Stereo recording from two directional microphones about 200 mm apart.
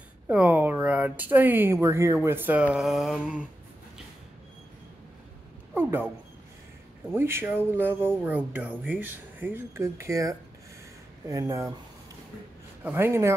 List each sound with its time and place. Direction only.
0.3 s speech: 5° right (ahead or behind)
5.8 s speech: 10° right (ahead or behind)
7.1 s speech: 10° right (ahead or behind)
12.8 s speech: 10° right (ahead or behind)